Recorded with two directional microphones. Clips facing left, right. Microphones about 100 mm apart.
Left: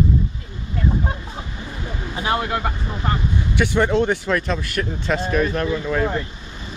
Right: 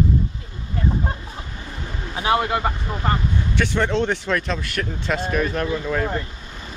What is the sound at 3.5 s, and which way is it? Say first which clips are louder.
Speech: left 4 dB; 10° left (ahead or behind).